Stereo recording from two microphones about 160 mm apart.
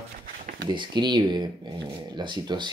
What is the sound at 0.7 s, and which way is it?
Speech, 25° right (ahead or behind).